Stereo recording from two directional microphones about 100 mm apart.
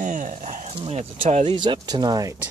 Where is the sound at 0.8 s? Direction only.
85° right.